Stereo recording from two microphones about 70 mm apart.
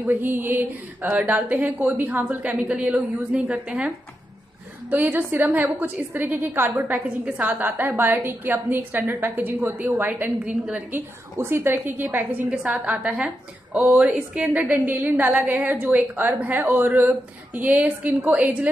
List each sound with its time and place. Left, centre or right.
0.1 s a woman's voice: right
11.3 s a woman's voice: right; by 18.7 s centre